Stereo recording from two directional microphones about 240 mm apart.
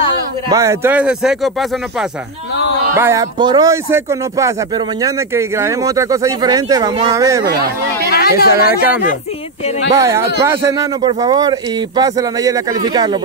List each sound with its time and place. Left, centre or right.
0.5 s speech: centre
3.0 s speech: centre
7.4 s speech: right
8.1 s speech: left
9.9 s speech: centre